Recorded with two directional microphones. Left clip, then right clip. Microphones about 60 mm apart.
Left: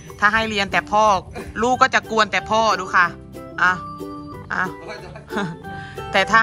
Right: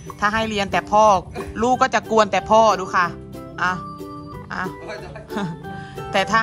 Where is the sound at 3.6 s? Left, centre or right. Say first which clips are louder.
Left 4 dB; right.